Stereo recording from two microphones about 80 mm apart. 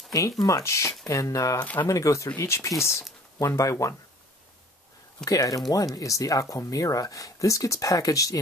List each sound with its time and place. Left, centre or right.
0.4 s speech: left
1.6 s speech: left
1.9 s speech: left
5.2 s speech: left